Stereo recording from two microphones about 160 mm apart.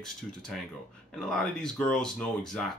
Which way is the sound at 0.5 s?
Centre (ahead or behind).